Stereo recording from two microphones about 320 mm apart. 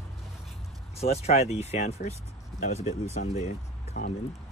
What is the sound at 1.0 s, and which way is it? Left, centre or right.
Speech, centre.